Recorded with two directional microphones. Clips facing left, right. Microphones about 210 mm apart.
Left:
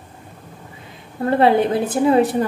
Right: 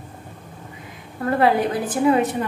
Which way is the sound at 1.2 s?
25° left (ahead or behind).